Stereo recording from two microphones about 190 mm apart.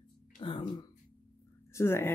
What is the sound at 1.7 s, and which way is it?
Speech, 15° left (ahead or behind).